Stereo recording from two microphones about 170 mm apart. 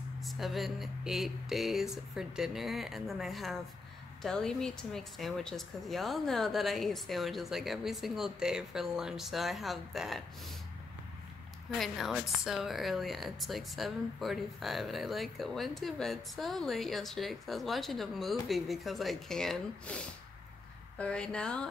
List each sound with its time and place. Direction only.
0.2 s speech: centre (ahead or behind)
11.8 s speech: centre (ahead or behind)
21.0 s speech: 5° left (ahead or behind)